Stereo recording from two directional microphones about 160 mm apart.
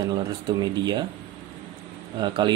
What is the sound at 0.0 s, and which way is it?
Speech, 25° right (ahead or behind).